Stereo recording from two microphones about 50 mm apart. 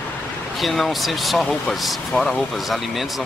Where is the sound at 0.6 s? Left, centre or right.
Centre.